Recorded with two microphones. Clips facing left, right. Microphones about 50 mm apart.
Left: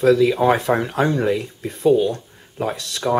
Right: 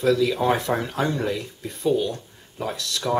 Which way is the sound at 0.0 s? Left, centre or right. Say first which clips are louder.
Left 5 dB; left.